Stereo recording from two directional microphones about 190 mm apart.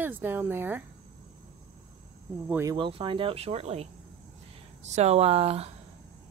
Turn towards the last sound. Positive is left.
turn(degrees=-30)  # may be behind; listen again after turning